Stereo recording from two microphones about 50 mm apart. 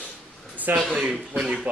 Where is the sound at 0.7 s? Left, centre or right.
Right.